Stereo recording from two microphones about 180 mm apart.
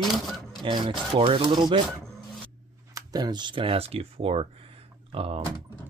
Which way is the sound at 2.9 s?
20° right (ahead or behind).